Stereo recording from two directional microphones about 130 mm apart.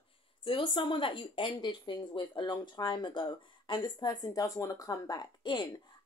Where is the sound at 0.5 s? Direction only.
40° left (ahead or behind).